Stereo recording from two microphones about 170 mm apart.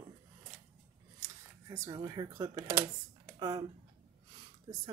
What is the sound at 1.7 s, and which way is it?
Speech, 20° right (ahead or behind).